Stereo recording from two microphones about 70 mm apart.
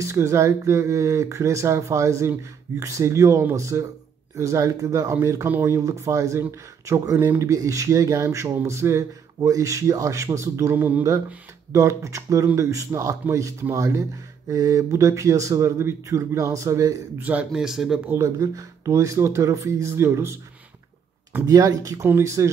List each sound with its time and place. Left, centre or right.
0.0 s speech: right
10.7 s speech: right
11.7 s speech: right
17.2 s speech: right
17.5 s speech: centre
18.1 s speech: right
21.5 s speech: right
22.2 s speech: right